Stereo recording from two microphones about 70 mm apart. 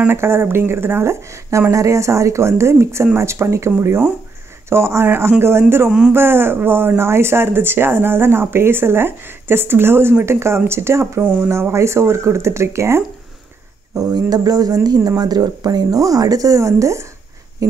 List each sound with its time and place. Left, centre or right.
0.0 s speech: right
5.9 s a man's voice: centre
6.1 s speech: right
13.9 s speech: right